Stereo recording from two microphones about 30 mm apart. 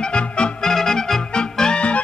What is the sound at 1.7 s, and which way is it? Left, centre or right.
Music, left.